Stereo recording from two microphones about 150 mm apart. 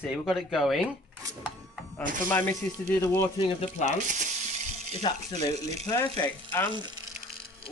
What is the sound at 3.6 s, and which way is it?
Speech, 50° left (ahead or behind).